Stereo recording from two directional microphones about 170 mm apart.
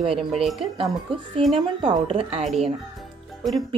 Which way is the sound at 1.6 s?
30° right (ahead or behind).